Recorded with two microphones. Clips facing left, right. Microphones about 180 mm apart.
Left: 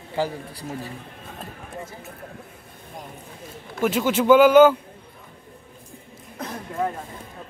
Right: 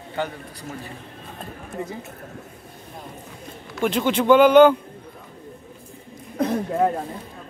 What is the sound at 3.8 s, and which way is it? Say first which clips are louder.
Speech: even; 5° left (ahead or behind).